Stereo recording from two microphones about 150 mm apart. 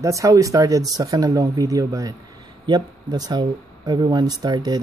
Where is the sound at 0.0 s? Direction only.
20° right (ahead or behind).